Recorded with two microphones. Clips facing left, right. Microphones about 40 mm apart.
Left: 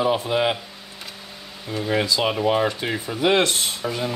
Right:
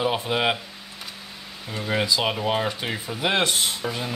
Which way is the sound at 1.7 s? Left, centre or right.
Centre.